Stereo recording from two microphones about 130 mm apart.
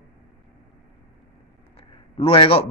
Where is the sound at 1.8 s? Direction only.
50° left (ahead or behind).